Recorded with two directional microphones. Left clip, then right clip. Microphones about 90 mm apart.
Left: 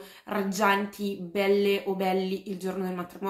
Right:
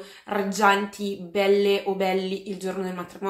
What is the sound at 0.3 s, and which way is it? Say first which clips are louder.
Speech: right 4 dB; 20° left (ahead or behind).